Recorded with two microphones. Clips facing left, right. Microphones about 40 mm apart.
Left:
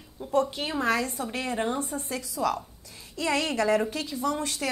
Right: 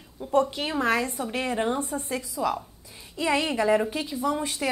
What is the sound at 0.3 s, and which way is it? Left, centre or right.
Speech, right.